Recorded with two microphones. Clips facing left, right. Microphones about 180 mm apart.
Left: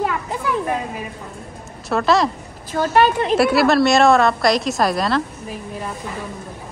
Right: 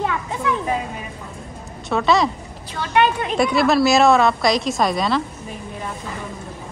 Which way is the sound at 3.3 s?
5° left (ahead or behind).